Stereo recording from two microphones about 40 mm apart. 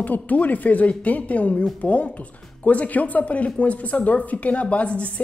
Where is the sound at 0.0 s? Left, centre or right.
Left.